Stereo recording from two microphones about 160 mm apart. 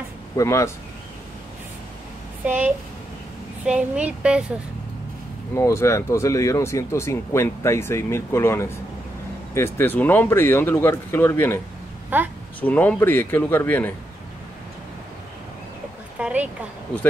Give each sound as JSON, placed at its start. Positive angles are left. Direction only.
{"t": 0.4, "sound": "speech", "side_deg": 20}
{"t": 2.4, "sound": "speech", "side_deg": -10}
{"t": 5.5, "sound": "speech", "side_deg": 15}
{"t": 12.1, "sound": "speech", "side_deg": -10}
{"t": 12.5, "sound": "speech", "side_deg": 10}
{"t": 16.2, "sound": "speech", "side_deg": -10}